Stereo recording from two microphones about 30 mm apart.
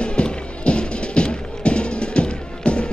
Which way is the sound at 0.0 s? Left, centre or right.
Left.